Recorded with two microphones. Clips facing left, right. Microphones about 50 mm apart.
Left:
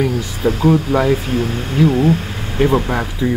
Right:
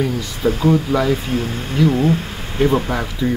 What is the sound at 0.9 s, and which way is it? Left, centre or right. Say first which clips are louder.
Speech: left 2 dB; left.